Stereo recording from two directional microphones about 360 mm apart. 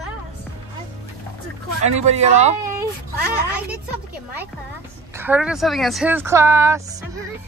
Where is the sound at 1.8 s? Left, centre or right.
Centre.